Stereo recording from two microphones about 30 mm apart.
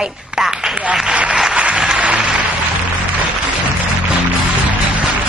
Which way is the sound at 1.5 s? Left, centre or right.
Right.